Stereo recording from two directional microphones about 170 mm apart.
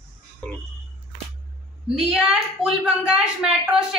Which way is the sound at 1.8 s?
5° right (ahead or behind).